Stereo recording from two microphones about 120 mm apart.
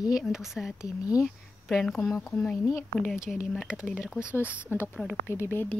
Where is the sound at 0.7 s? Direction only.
30° left (ahead or behind).